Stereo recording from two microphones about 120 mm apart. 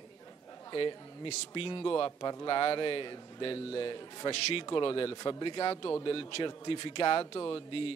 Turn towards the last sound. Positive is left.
turn(degrees=50)  # may be behind; listen again after turning